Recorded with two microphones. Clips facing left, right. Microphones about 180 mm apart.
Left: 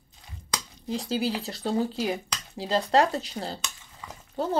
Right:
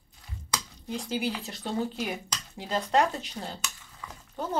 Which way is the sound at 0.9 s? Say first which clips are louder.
Left 3 dB; 35° left (ahead or behind).